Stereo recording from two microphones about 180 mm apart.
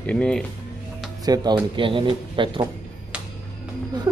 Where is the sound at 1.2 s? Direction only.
20° right (ahead or behind).